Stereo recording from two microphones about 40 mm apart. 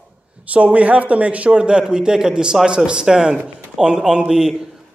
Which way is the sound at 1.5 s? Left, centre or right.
Right.